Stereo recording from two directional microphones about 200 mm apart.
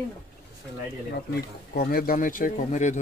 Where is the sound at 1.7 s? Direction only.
50° left (ahead or behind).